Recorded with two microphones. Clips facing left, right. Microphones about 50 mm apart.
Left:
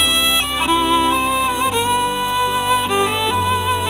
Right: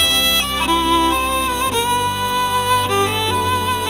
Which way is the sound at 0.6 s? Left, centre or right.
Centre.